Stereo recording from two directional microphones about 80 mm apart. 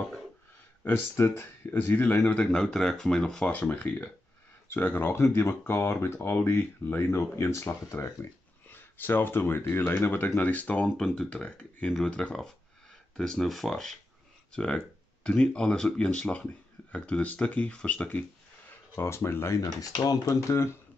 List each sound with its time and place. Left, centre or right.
0.8 s speech: left
2.4 s speech: centre; by 8.3 s left
8.6 s speech: left
18.7 s speech: left
19.6 s speech: left